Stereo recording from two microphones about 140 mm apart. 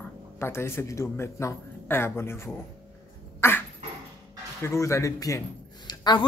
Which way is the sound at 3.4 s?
15° left (ahead or behind).